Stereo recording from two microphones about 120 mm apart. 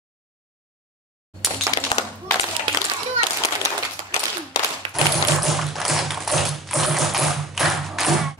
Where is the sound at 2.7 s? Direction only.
45° right (ahead or behind).